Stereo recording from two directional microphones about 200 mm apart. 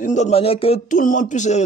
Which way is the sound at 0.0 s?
35° left (ahead or behind).